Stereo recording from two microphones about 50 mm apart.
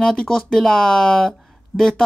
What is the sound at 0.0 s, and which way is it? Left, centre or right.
Speech, centre.